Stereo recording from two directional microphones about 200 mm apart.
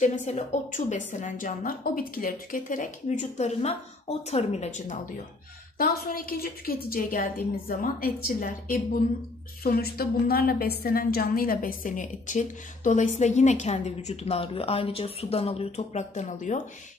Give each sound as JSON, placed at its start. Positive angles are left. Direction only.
{"t": 0.0, "sound": "a woman's voice", "side_deg": 35}
{"t": 9.6, "sound": "a woman's voice", "side_deg": 50}